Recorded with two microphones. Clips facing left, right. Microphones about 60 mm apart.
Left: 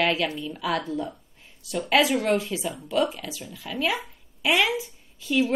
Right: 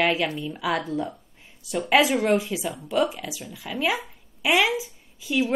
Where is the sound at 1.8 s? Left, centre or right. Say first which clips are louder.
Right 2 dB; right.